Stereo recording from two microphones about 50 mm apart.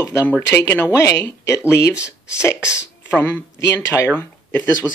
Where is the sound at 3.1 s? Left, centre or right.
Left.